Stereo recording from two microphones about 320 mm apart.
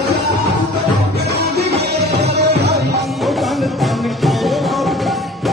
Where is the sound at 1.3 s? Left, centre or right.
Right.